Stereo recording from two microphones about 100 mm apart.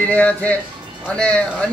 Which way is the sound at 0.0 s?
15° left (ahead or behind).